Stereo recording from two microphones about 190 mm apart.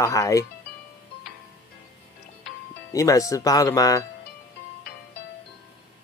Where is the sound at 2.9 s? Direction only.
15° left (ahead or behind).